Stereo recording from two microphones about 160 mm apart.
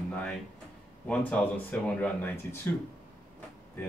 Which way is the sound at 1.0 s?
10° left (ahead or behind).